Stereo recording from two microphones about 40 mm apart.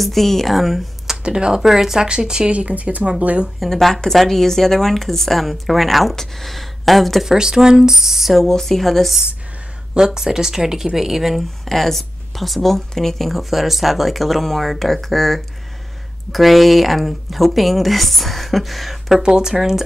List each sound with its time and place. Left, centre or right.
0.0 s speech: centre
1.1 s speech: centre
2.0 s speech: centre
2.5 s speech: right
3.7 s speech: centre
7.2 s speech: centre
8.5 s speech: centre
9.9 s speech: centre
19.1 s speech: centre